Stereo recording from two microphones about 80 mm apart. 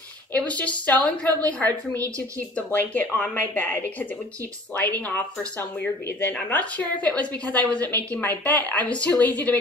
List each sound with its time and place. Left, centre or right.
0.3 s a woman's voice: centre
5.6 s a woman's voice: left